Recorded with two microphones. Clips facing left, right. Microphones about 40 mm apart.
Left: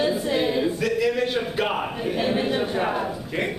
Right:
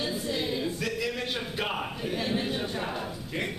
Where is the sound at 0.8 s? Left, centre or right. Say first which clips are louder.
Left 9 dB; centre.